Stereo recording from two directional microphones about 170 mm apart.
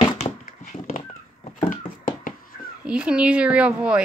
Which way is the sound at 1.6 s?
55° left (ahead or behind).